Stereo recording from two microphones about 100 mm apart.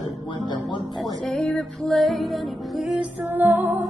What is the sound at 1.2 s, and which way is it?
Music, 5° left (ahead or behind).